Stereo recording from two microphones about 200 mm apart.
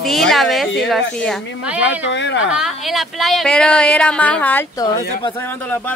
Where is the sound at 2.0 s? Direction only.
65° left (ahead or behind).